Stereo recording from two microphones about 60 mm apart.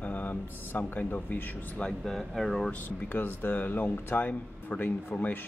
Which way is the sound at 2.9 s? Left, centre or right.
Left.